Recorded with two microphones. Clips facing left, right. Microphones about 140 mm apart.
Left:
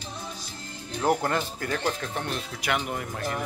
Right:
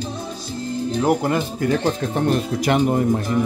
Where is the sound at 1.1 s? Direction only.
15° right (ahead or behind).